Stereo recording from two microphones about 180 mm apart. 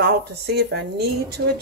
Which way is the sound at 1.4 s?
90° right.